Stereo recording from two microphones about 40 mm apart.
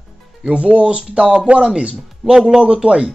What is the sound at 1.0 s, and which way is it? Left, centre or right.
Speech, centre.